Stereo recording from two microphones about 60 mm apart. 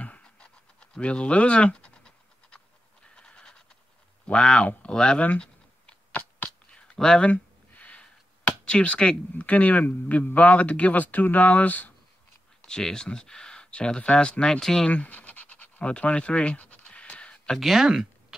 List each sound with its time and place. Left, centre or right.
0.0 s pant: centre
3.2 s a sound: centre
4.3 s a man's voice: centre
6.7 s a sound: centre
8.6 s a man's voice: centre
12.6 s speech: centre
14.9 s scratch: left
17.6 s speech: centre